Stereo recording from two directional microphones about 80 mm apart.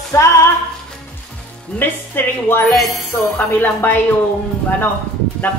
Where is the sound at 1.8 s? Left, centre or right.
Left.